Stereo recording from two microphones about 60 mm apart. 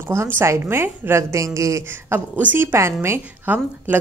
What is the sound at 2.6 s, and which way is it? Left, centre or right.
Speech, right.